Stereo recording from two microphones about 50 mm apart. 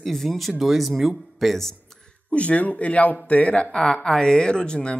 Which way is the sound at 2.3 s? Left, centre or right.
Left.